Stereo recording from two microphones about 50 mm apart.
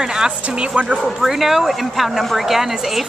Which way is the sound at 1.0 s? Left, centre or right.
Centre.